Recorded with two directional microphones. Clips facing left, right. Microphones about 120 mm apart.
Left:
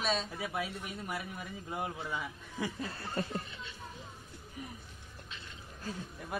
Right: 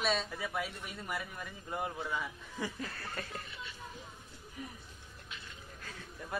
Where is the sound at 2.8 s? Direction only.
25° left (ahead or behind).